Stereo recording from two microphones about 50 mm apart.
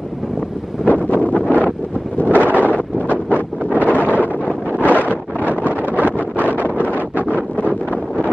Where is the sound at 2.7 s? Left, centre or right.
Left.